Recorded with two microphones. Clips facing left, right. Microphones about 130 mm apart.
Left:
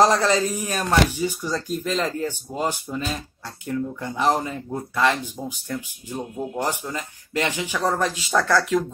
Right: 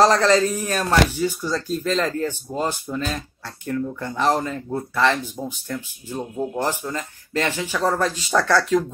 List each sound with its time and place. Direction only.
0.0 s speech: 10° left (ahead or behind)
6.3 s a man's voice: 5° right (ahead or behind)
6.6 s speech: 15° left (ahead or behind)